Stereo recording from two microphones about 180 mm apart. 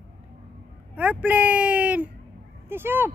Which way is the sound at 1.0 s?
10° right (ahead or behind).